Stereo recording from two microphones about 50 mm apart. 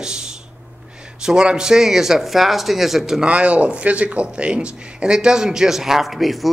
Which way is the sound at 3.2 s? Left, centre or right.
Right.